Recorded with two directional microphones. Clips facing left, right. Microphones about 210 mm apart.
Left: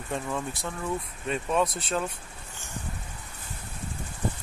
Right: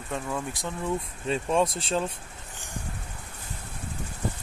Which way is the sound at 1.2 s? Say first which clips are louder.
Right 2 dB; 30° right (ahead or behind).